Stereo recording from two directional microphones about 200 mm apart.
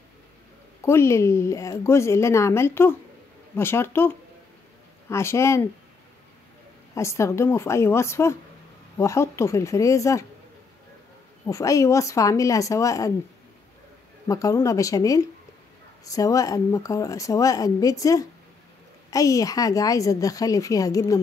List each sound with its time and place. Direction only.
0.8 s speech: 15° left (ahead or behind)
5.1 s speech: 15° left (ahead or behind)
7.0 s speech: 15° left (ahead or behind)
11.4 s speech: 15° left (ahead or behind)
14.2 s speech: 15° left (ahead or behind)